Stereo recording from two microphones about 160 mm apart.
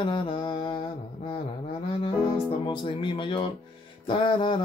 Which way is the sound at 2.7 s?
30° left (ahead or behind).